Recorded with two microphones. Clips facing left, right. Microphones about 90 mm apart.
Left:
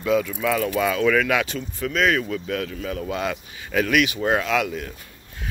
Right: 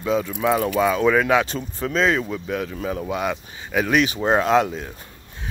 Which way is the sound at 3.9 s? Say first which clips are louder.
Right 2 dB; 30° right (ahead or behind).